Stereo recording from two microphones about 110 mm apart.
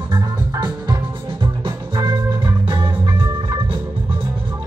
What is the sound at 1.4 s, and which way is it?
Music, 45° right (ahead or behind).